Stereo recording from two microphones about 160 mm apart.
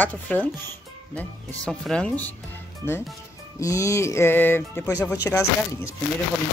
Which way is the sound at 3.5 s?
20° left (ahead or behind).